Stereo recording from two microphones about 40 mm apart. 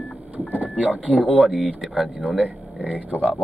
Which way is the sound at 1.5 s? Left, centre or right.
Centre.